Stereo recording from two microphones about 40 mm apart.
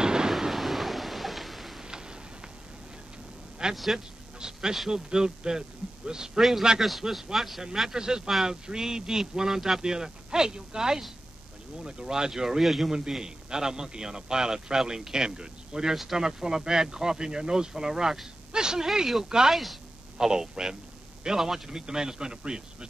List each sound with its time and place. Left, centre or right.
0.0 s a sound: centre
0.3 s thunder: centre
3.7 s speech: centre
4.4 s a man's voice: centre
6.8 s a man's voice: centre
13.1 s a man's voice: centre
20.2 s a man's voice: centre